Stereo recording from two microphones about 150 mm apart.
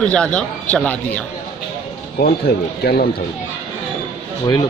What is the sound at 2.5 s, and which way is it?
Speech, 90° left.